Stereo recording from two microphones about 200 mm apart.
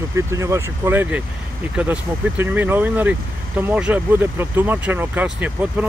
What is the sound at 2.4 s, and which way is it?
Speech, 10° right (ahead or behind).